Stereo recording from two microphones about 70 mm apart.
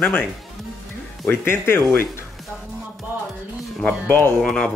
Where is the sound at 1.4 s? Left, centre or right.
Left.